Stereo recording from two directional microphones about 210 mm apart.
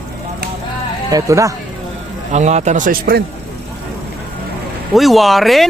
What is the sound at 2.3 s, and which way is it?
Speech, 35° right (ahead or behind).